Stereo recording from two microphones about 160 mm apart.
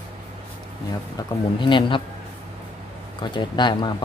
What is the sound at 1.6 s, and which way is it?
Speech, 30° left (ahead or behind).